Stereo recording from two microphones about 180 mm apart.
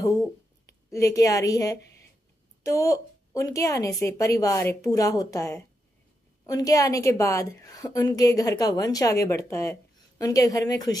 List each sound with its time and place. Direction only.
0.8 s a woman's voice: 15° left (ahead or behind)